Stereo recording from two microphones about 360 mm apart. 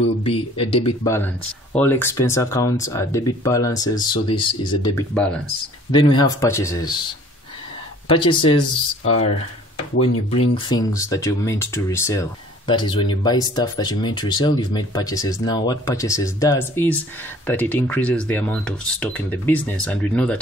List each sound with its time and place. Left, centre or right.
0.2 s speech: centre
8.1 s speech: centre
10.0 s speech: left
10.5 s speech: centre